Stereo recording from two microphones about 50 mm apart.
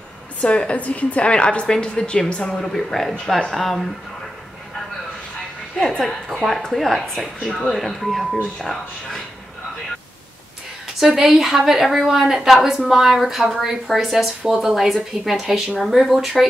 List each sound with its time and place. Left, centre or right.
0.4 s a woman's voice: left
2.5 s a woman's voice: centre
5.8 s a woman's voice: centre
11.0 s a woman's voice: centre